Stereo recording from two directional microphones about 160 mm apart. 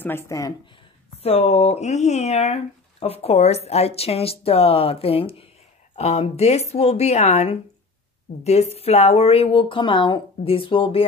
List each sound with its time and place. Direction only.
0.0 s speech: 15° left (ahead or behind)
1.2 s speech: 40° left (ahead or behind)